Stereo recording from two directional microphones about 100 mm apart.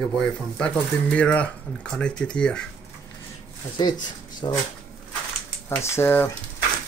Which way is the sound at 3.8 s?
50° left (ahead or behind).